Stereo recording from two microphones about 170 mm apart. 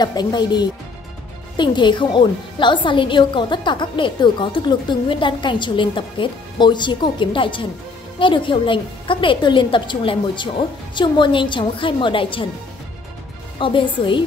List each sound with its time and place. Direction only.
0.0 s a woman's voice: 25° left (ahead or behind)
13.6 s a woman's voice: 30° left (ahead or behind)